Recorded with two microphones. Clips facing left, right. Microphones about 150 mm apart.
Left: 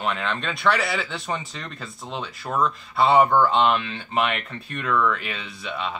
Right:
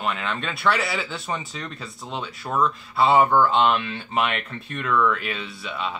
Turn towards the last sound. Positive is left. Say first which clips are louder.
# even
turn(degrees=0)  # may be behind; listen again after turning